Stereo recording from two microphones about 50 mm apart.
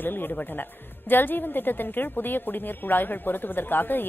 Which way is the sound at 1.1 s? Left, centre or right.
Left.